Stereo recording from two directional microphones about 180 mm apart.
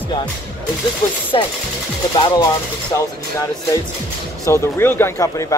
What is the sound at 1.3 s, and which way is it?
Speech, 25° left (ahead or behind).